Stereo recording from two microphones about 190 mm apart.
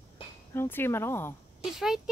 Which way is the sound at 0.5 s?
10° left (ahead or behind).